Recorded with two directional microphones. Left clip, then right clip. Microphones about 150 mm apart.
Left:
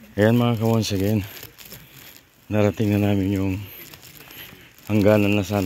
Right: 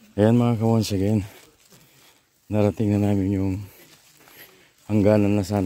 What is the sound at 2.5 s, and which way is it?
Speech, 35° right (ahead or behind).